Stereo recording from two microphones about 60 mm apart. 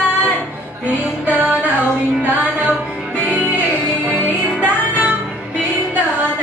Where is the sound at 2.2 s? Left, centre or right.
Right.